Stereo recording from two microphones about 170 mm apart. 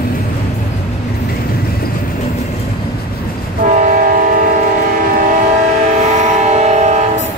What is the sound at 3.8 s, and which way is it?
Train, 55° right (ahead or behind).